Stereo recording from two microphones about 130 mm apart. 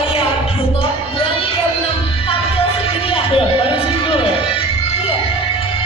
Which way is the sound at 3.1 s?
45° left (ahead or behind).